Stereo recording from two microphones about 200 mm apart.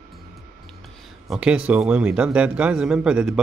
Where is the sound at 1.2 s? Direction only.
Centre (ahead or behind).